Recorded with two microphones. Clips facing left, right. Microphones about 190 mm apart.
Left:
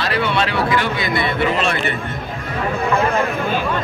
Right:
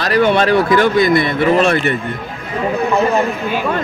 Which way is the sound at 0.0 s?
45° right (ahead or behind).